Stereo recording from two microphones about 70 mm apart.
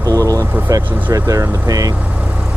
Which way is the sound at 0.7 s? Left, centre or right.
Right.